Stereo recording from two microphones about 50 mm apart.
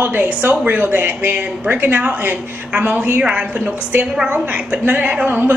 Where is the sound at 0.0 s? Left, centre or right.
Right; by 3.7 s centre.